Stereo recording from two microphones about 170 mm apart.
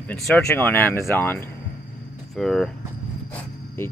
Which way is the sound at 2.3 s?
Centre (ahead or behind).